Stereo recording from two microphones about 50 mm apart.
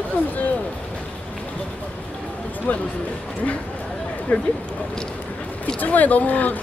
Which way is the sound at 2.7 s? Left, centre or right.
Left.